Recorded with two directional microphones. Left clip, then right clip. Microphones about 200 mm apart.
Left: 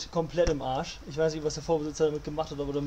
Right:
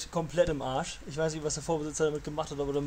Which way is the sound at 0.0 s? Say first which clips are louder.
Left 1 dB; 35° right (ahead or behind).